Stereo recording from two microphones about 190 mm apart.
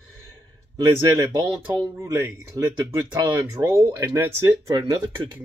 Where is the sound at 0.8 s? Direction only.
15° right (ahead or behind).